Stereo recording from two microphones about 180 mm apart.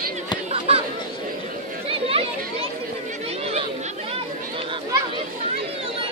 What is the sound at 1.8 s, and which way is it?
Chatter, 30° right (ahead or behind).